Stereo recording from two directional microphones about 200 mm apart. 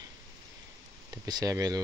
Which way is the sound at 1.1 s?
20° right (ahead or behind).